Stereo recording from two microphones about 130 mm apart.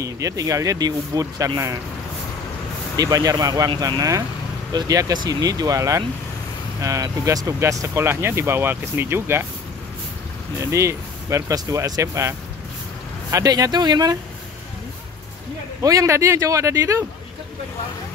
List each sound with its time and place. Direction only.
0.0 s speech: 25° right (ahead or behind)
3.0 s speech: 25° right (ahead or behind)
10.6 s speech: 20° right (ahead or behind)
15.8 s speech: 25° right (ahead or behind)